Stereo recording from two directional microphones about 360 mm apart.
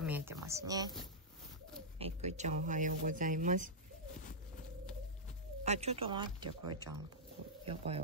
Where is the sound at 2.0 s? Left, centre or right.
Centre.